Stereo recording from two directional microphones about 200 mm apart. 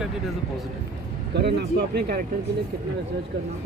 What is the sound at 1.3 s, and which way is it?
Speech, 55° right (ahead or behind).